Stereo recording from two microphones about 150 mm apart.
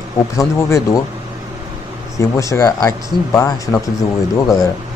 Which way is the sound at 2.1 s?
20° left (ahead or behind).